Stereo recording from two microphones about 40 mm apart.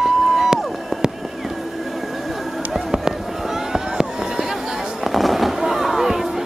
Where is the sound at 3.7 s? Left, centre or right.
Centre.